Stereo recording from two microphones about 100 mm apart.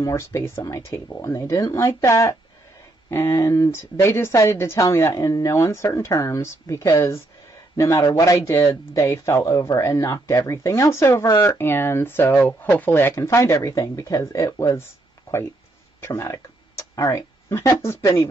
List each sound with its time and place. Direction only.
0.0 s a woman's voice: 30° left (ahead or behind)
15.3 s a sound: 25° left (ahead or behind)
16.0 s a woman's voice: 30° left (ahead or behind)